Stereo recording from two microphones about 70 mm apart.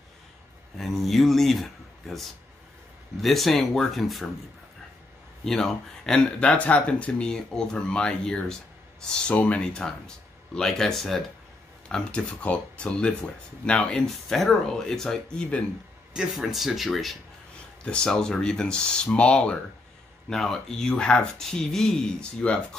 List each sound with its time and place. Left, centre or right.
0.7 s a sound: centre
3.2 s speech: centre
5.4 s speech: centre
16.1 s speech: centre
17.8 s speech: centre